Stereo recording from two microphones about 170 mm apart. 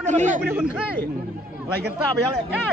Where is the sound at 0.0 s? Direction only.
45° right (ahead or behind).